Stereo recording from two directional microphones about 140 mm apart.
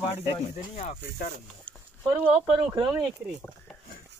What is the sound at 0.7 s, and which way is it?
Speech, 70° left (ahead or behind).